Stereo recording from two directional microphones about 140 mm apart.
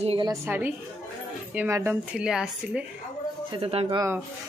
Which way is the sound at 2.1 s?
5° right (ahead or behind).